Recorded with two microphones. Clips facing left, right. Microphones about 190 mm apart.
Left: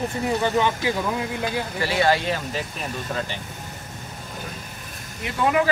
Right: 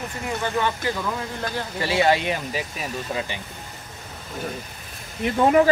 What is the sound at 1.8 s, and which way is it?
Speech, 25° right (ahead or behind).